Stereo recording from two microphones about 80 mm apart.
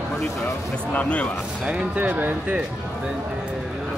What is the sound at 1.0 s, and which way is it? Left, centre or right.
Speech, centre.